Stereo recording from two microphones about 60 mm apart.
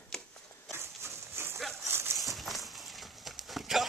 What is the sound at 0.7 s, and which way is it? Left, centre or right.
Dog, right.